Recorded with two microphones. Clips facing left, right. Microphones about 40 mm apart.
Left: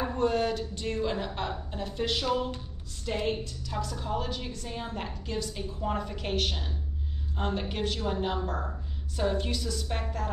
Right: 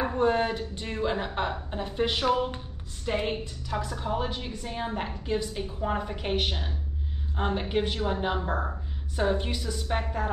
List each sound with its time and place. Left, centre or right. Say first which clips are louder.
0.0 s a woman's voice: right 2 dB; right